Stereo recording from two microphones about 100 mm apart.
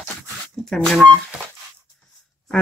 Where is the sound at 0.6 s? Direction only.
5° left (ahead or behind).